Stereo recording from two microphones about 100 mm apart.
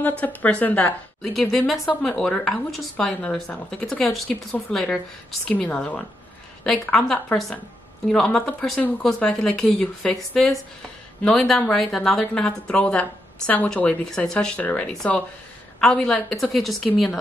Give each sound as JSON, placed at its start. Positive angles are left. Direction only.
{"t": 0.2, "sound": "speech", "side_deg": 15}
{"t": 1.2, "sound": "speech", "side_deg": 5}